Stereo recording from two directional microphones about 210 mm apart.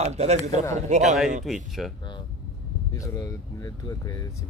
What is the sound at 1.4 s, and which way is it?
Speech, centre (ahead or behind).